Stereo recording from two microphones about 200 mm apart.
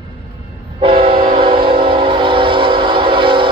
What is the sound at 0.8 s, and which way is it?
Train, 30° right (ahead or behind).